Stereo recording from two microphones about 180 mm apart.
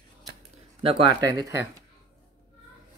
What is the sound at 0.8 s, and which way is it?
Speech, 25° right (ahead or behind).